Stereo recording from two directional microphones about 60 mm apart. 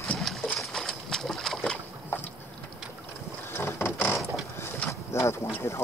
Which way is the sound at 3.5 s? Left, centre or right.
Left.